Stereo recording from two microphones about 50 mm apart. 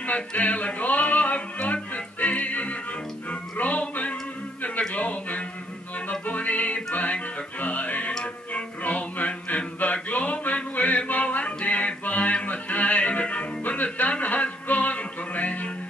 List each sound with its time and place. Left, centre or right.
0.0 s music: left
4.7 s a sound: left
6.0 s music: left